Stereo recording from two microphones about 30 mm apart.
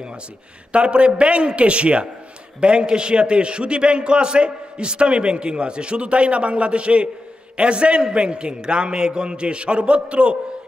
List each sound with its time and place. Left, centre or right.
0.7 s a man's voice: right